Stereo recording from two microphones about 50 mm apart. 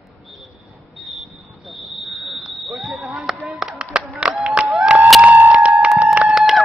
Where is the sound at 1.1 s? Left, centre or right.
Centre.